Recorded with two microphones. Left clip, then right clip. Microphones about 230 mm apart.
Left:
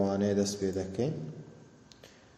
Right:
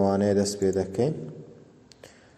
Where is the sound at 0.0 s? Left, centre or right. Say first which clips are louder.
Right 6 dB; centre.